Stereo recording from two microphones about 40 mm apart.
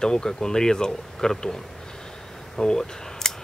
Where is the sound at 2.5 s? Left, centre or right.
Centre.